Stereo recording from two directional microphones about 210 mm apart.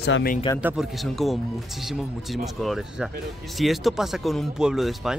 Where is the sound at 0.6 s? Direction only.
5° right (ahead or behind).